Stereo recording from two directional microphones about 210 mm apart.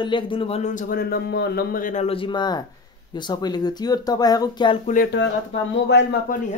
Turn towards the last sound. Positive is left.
turn(degrees=55)  # may be behind; listen again after turning